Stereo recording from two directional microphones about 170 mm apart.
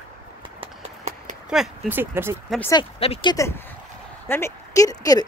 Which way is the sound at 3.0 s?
35° left (ahead or behind).